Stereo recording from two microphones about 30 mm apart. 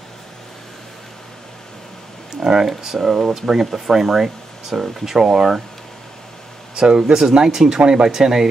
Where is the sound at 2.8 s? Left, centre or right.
Centre.